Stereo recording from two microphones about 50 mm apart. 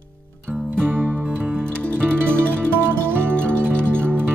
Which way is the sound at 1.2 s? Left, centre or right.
Right.